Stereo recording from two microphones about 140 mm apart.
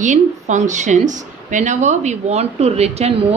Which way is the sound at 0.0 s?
60° right (ahead or behind).